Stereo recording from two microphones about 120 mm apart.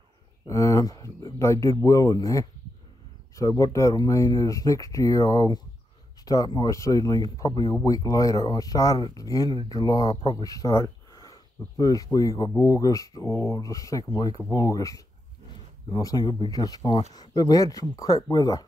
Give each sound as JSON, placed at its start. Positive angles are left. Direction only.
{"t": 0.5, "sound": "speech", "side_deg": 25}
{"t": 15.5, "sound": "a sound", "side_deg": 35}
{"t": 16.3, "sound": "speech", "side_deg": 35}